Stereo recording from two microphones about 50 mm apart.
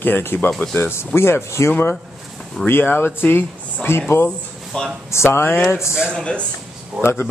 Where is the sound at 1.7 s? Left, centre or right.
Left.